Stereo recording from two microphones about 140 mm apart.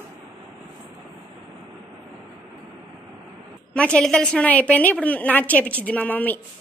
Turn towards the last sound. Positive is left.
turn(degrees=10)  # may be behind; listen again after turning